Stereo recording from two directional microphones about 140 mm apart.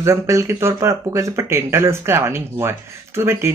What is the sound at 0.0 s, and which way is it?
Speech, 20° right (ahead or behind).